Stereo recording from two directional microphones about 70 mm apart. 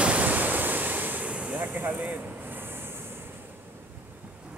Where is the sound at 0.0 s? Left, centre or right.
Right.